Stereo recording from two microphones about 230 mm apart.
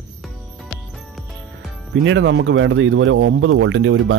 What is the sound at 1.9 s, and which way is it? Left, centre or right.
Speech, right.